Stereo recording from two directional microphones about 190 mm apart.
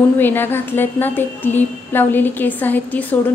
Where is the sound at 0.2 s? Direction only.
10° left (ahead or behind).